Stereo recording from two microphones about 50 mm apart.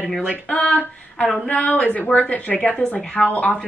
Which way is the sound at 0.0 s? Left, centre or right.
Centre.